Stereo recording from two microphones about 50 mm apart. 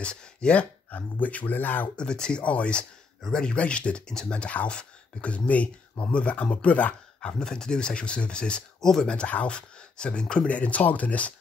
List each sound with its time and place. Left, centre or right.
0.0 s speech: left
2.0 s speech: centre
9.1 s speech: left